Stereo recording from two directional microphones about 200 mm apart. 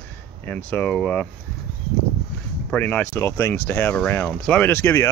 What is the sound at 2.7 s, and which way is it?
Speech, 10° left (ahead or behind).